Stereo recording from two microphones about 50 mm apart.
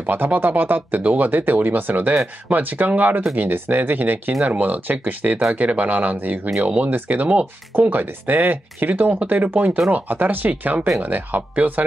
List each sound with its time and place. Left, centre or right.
0.0 s speech: right